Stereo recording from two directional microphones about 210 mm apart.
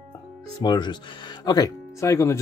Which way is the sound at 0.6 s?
20° left (ahead or behind).